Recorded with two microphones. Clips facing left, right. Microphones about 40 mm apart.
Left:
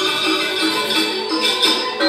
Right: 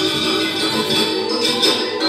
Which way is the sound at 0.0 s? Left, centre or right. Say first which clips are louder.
Even; left.